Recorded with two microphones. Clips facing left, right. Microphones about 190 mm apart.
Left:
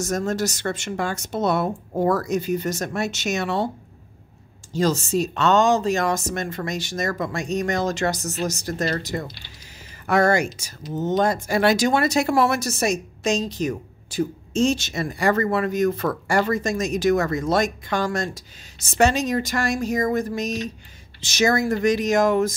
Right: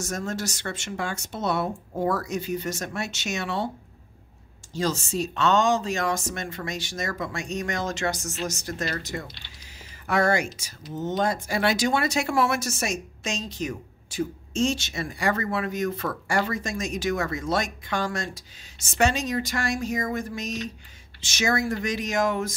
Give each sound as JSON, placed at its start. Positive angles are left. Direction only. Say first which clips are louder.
{"t": 0.0, "sound": "speech", "louder": "left 6 dB", "side_deg": 40}
{"t": 4.7, "sound": "speech", "louder": "left 6 dB", "side_deg": 40}